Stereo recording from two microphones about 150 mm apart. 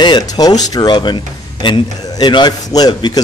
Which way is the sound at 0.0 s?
30° left (ahead or behind).